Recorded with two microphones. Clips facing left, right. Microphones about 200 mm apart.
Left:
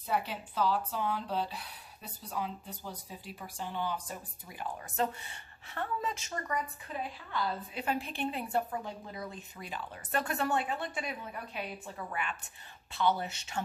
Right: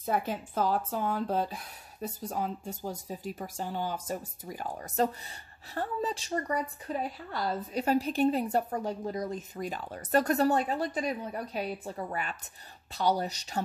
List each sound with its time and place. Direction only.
0.0 s a woman's voice: 45° right (ahead or behind)